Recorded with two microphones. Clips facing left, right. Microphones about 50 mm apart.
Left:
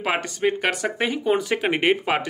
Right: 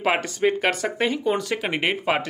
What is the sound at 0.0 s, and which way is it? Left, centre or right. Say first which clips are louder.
Speech: right 1 dB; centre.